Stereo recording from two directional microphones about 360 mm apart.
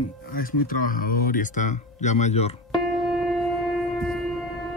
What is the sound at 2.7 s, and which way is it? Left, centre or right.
Music, centre.